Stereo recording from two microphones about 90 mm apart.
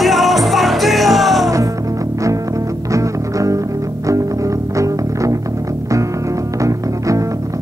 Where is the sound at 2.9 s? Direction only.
35° right (ahead or behind).